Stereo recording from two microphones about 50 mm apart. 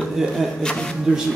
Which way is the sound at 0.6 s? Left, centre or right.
Centre.